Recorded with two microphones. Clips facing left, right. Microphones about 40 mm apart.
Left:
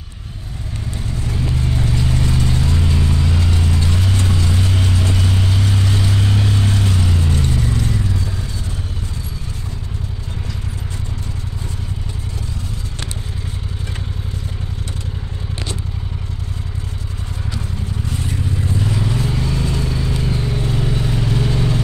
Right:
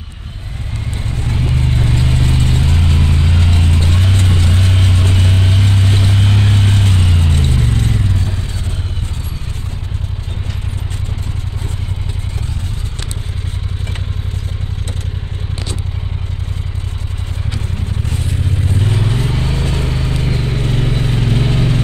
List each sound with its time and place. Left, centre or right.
1.0 s vehicle: right
18.1 s vehicle: right